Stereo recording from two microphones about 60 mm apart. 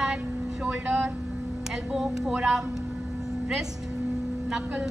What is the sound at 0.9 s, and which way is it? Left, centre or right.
Speech, right.